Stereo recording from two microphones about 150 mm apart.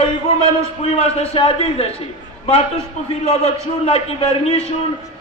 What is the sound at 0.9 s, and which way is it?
Speech, 40° left (ahead or behind).